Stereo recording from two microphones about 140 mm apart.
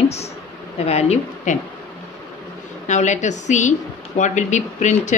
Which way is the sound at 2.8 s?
55° left (ahead or behind).